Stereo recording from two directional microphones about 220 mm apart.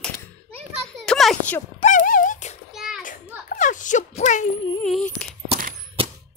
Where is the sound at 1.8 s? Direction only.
35° left (ahead or behind).